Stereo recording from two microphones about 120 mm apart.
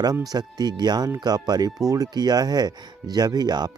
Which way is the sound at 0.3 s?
35° right (ahead or behind).